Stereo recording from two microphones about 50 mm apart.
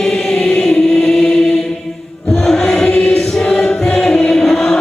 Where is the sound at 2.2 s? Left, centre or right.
Centre.